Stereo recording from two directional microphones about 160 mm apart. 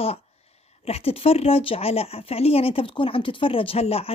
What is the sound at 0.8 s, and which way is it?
Speech, 40° left (ahead or behind).